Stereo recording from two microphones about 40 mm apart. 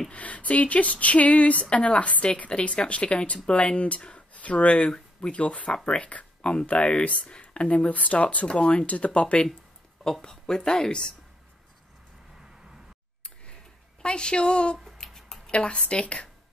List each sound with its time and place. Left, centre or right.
0.1 s speech: left
8.5 s speech: left
10.2 s a woman's voice: centre
14.0 s a woman's voice: left
15.1 s a sound: centre
15.5 s a woman's voice: left